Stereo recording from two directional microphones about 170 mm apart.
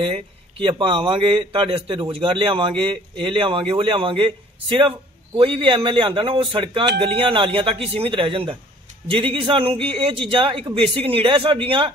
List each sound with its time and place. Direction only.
0.0 s speech: 30° right (ahead or behind)